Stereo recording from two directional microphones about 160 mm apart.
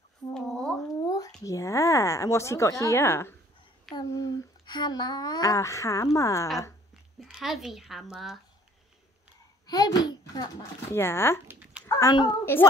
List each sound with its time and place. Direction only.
0.3 s a sound: 5° left (ahead or behind)
1.0 s squish: 25° left (ahead or behind)
1.4 s a woman's voice: 20° left (ahead or behind)
7.2 s a child's voice: 5° right (ahead or behind)
9.7 s a child's voice: 25° left (ahead or behind)